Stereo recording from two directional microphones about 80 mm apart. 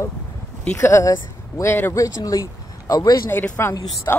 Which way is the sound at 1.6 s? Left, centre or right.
Left.